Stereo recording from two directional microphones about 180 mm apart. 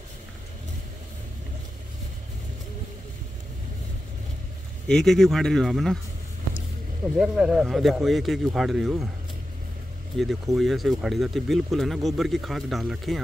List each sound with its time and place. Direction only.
4.8 s speech: 5° left (ahead or behind)
7.2 s speech: 5° right (ahead or behind)
10.1 s speech: centre (ahead or behind)